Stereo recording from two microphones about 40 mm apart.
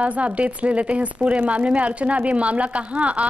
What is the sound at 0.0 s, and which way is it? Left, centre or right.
A woman's voice, right.